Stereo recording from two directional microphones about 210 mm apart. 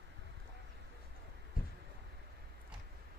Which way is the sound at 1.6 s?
45° left (ahead or behind).